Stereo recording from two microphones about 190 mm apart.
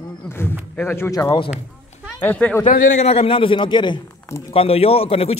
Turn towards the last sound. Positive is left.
turn(degrees=30)  # may be behind; listen again after turning